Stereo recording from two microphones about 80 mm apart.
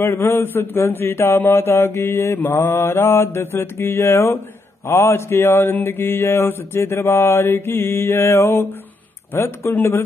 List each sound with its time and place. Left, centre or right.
0.0 s mantra: left